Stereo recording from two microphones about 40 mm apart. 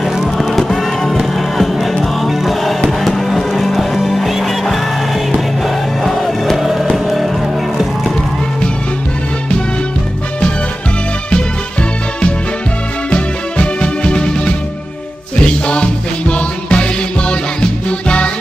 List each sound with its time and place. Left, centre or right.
0.0 s music: centre
3.0 s a sound: centre
3.5 s music: centre
13.1 s music: left